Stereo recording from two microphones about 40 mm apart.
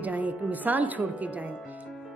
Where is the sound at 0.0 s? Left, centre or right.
Right.